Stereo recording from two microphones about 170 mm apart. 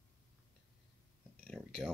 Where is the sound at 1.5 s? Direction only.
5° right (ahead or behind).